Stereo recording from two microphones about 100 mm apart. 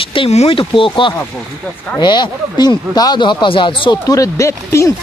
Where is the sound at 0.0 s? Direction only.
65° left (ahead or behind).